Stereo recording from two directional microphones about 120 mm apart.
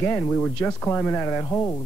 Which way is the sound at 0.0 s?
15° left (ahead or behind).